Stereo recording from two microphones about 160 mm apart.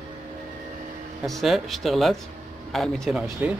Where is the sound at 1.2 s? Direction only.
Centre (ahead or behind).